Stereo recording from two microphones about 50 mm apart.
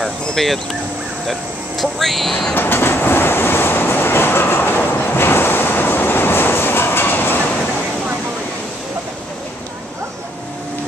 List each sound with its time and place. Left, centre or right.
0.0 s speech: centre
1.8 s speech: centre
2.5 s train: left